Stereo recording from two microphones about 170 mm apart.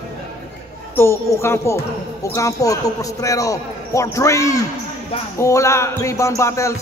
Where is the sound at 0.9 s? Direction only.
15° left (ahead or behind).